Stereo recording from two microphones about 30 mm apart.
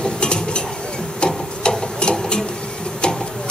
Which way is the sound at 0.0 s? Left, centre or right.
Left.